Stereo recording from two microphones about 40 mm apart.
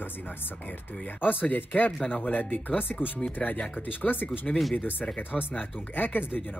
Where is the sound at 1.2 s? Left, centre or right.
Left.